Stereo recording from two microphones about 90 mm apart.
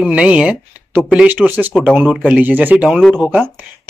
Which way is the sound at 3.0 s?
10° left (ahead or behind).